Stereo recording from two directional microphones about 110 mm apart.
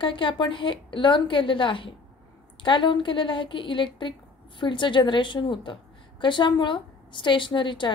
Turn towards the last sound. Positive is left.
turn(degrees=45)  # may be behind; listen again after turning